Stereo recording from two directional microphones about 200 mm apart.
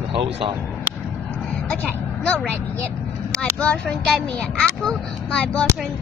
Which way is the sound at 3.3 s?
5° left (ahead or behind).